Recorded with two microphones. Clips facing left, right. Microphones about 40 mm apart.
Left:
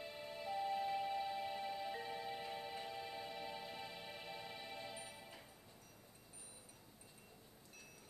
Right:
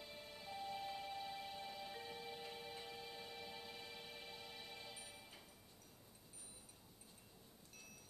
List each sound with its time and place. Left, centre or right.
0.2 s music: left